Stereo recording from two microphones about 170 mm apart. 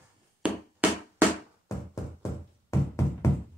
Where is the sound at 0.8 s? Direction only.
10° right (ahead or behind).